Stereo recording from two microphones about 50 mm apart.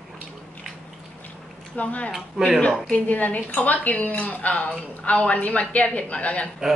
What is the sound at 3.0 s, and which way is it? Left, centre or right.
A woman's voice, left.